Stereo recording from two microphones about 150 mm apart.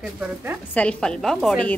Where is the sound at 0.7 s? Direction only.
5° left (ahead or behind).